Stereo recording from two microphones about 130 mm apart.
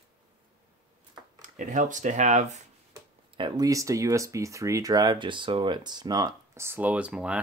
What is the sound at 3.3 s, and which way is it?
Speech, 35° right (ahead or behind).